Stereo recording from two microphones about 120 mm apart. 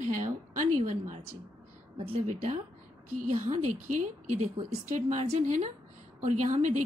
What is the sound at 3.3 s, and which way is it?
A woman's voice, 85° right.